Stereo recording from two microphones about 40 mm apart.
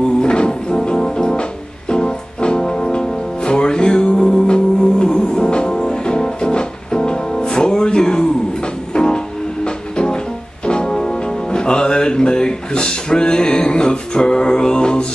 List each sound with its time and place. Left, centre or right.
0.2 s music: left